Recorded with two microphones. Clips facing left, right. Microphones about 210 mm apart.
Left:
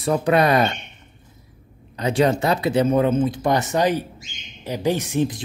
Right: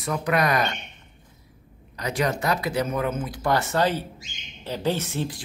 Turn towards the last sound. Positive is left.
turn(degrees=20)  # may be behind; listen again after turning